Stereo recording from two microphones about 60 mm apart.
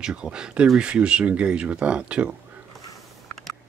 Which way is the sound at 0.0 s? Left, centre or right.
Centre.